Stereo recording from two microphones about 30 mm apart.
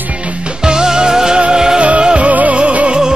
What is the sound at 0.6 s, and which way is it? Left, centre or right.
Music, right.